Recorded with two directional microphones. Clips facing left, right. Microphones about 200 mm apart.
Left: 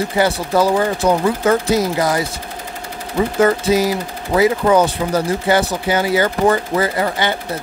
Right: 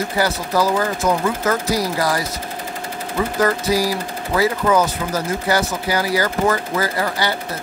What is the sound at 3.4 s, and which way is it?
Speech, 25° left (ahead or behind).